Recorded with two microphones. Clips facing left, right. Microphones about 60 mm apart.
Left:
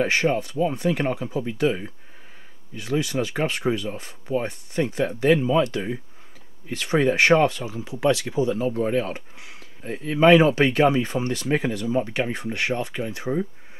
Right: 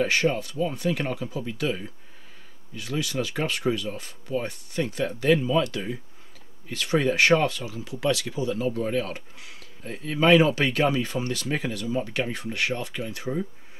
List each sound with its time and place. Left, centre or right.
0.0 s speech: left